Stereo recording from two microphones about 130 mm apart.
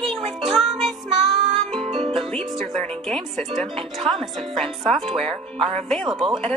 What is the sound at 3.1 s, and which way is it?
Speech, centre (ahead or behind).